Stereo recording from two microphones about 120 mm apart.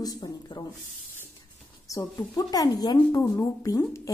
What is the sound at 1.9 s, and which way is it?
Speech, 30° left (ahead or behind).